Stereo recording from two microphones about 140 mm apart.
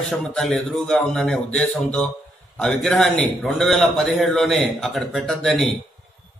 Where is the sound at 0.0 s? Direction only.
5° left (ahead or behind).